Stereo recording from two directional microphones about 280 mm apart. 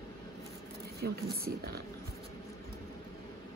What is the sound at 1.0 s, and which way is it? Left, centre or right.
Speech, right.